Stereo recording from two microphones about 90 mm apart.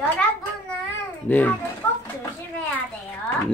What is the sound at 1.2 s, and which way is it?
Speech, 20° left (ahead or behind).